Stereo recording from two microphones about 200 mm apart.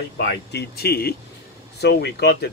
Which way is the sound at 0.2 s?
60° left (ahead or behind).